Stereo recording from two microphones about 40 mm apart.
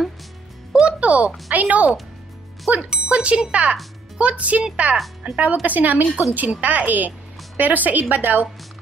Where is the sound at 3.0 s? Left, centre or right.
Right.